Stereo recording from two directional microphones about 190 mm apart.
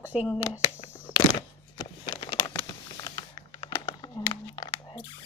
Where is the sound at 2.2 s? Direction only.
25° left (ahead or behind).